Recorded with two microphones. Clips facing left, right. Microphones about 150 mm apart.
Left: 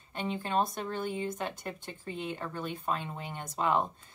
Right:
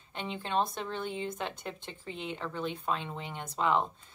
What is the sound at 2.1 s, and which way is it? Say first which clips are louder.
A woman's voice: even; 10° left (ahead or behind).